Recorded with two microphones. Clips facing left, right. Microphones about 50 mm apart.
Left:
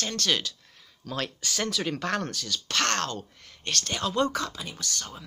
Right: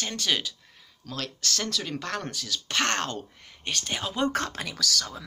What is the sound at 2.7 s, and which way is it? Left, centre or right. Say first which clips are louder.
Speech: even; centre.